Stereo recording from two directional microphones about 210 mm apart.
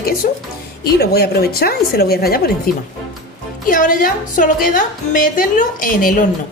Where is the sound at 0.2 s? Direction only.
40° left (ahead or behind).